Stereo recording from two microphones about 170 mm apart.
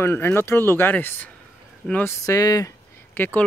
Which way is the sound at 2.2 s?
20° left (ahead or behind).